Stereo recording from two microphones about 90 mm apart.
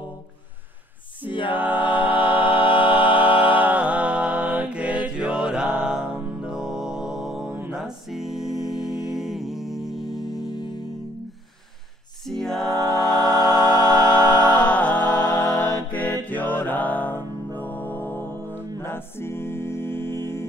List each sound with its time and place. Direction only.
1.3 s a capella: 65° left (ahead or behind)
1.6 s music: 20° right (ahead or behind)
2.6 s music: 75° left (ahead or behind)
3.0 s music: 20° right (ahead or behind); by 10.2 s centre (ahead or behind)
12.3 s a capella: 5° left (ahead or behind)
14.0 s music: 15° left (ahead or behind)
18.8 s a capella: 25° left (ahead or behind)